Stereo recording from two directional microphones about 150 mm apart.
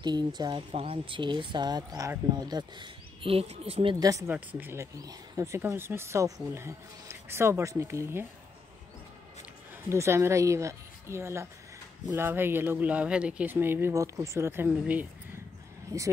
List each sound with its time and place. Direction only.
0.0 s speech: 30° right (ahead or behind)
4.0 s speech: 20° right (ahead or behind)
9.8 s speech: 15° right (ahead or behind)